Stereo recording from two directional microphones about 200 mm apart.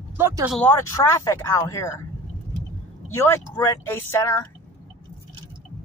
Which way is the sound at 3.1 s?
15° left (ahead or behind).